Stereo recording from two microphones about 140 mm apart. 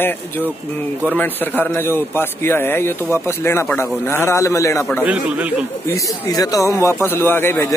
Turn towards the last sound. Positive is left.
turn(degrees=20)  # may be behind; listen again after turning